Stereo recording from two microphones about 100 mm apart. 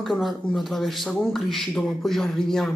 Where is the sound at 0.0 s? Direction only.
Centre (ahead or behind).